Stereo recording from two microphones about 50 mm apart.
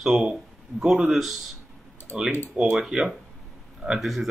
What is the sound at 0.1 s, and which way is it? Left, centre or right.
Speech, centre.